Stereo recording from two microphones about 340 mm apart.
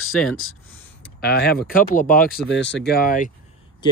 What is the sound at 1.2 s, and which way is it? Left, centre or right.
Speech, left.